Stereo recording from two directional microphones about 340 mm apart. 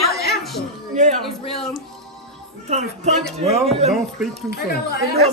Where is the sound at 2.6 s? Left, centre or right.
Centre.